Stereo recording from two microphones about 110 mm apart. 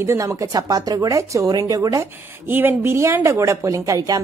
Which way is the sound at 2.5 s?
20° right (ahead or behind).